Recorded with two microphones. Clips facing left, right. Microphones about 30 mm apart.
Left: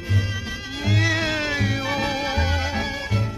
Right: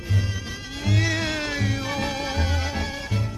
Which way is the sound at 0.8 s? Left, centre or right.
Centre.